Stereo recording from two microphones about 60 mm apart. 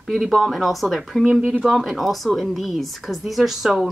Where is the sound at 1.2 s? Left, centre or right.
Centre.